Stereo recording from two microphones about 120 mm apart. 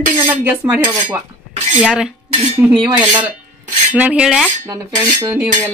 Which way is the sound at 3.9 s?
10° right (ahead or behind).